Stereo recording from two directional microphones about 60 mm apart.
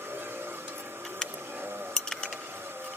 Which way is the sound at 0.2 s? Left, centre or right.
Right.